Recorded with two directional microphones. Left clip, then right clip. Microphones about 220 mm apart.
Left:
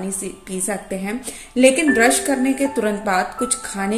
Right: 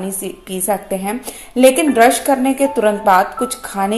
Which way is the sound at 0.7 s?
40° right (ahead or behind).